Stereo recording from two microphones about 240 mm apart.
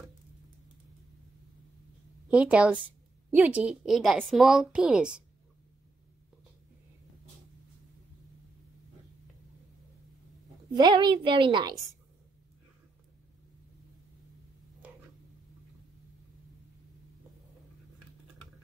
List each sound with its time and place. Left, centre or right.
2.2 s a woman's voice: centre
10.7 s a woman's voice: centre